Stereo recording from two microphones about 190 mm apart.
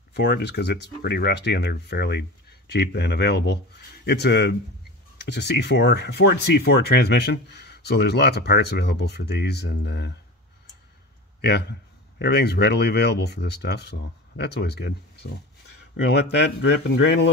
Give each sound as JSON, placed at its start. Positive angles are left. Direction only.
{"t": 0.1, "sound": "speech", "side_deg": 60}
{"t": 12.2, "sound": "speech", "side_deg": 60}